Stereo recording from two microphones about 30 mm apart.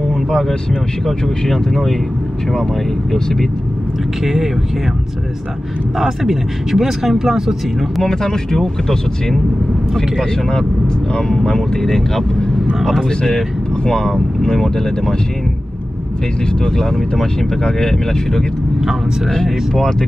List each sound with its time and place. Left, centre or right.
0.1 s vehicle: centre
1.5 s speech: centre
4.2 s speech: centre
5.9 s speech: centre
8.0 s speech: centre
8.5 s speech: centre
13.8 s speech: centre
16.6 s speech: left
19.3 s speech: centre